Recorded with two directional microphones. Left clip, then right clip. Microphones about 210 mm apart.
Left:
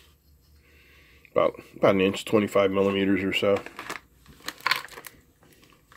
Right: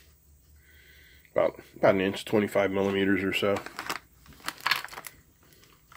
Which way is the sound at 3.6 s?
35° right (ahead or behind).